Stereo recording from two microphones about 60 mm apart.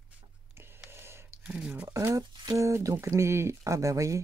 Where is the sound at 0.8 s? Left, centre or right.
Right.